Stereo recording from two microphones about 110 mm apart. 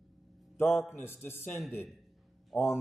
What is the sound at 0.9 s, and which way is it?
Speech, 20° left (ahead or behind).